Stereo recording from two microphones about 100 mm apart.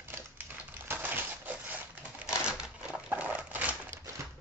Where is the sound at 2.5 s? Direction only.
10° right (ahead or behind).